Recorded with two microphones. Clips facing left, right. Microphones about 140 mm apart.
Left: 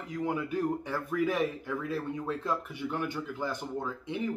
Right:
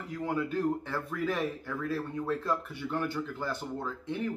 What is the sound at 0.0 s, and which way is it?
Speech, 15° left (ahead or behind).